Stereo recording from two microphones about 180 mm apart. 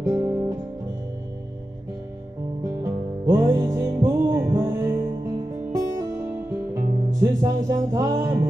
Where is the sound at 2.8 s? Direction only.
15° right (ahead or behind).